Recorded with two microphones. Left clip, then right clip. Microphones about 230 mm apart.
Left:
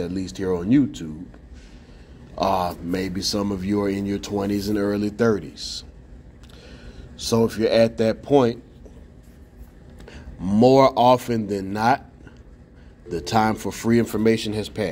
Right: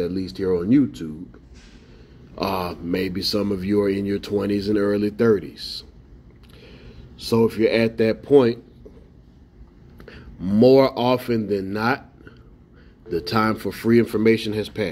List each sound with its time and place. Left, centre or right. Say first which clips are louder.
0.0 s speech: right 3 dB; left
2.3 s speech: left 4 dB; left
9.9 s a man's voice: right 1 dB; left
13.1 s speech: left 1 dB; left